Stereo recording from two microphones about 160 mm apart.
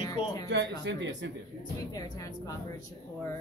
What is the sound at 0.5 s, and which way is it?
Speech, 90° right.